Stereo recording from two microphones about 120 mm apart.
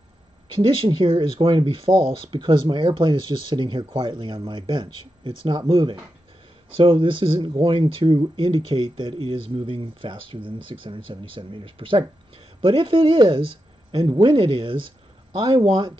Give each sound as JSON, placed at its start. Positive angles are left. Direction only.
{"t": 0.6, "sound": "speech", "side_deg": -45}